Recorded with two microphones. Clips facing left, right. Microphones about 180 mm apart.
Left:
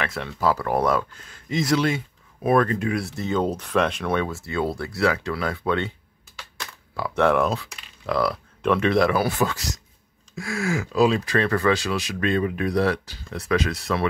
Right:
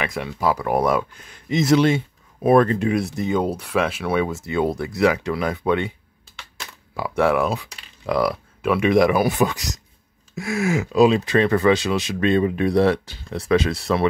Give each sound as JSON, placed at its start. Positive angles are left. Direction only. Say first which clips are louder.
{"t": 0.0, "sound": "speech", "louder": "right 1 dB", "side_deg": -15}
{"t": 7.0, "sound": "speech", "louder": "right 1 dB", "side_deg": -10}